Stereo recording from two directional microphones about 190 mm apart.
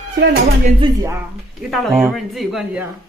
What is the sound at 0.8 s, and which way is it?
Speech, 20° right (ahead or behind).